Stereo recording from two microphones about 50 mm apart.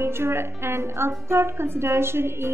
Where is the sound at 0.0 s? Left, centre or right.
Right.